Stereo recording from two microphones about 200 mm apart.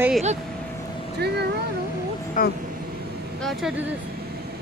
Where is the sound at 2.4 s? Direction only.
40° left (ahead or behind).